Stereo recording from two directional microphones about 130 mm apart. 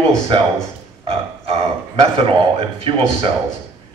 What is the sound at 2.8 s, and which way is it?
Speech, 45° right (ahead or behind).